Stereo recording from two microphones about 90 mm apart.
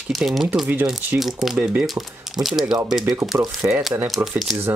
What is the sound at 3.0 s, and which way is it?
Speech, 45° right (ahead or behind).